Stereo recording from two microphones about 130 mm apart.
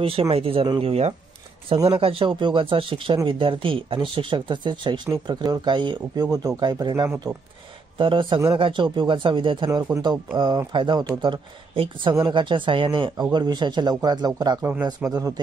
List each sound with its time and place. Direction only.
0.0 s speech: 45° right (ahead or behind); by 15.3 s 25° right (ahead or behind)